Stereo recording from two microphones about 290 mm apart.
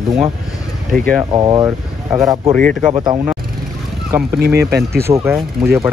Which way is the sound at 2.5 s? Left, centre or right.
Centre.